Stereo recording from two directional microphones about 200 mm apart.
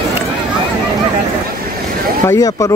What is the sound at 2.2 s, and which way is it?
Speech, 15° left (ahead or behind).